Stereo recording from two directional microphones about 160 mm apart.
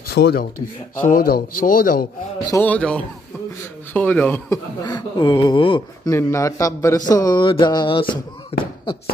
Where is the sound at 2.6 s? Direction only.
10° left (ahead or behind).